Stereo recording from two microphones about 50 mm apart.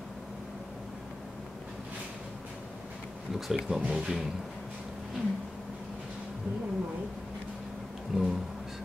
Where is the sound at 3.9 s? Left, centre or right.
Centre.